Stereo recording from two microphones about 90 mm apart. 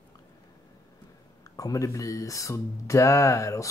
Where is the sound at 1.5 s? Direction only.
40° left (ahead or behind).